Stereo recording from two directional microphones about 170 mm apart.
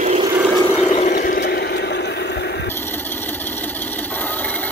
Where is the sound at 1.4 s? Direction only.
75° left (ahead or behind).